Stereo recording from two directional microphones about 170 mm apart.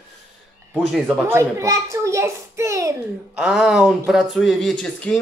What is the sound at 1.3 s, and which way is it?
Speech, 15° right (ahead or behind).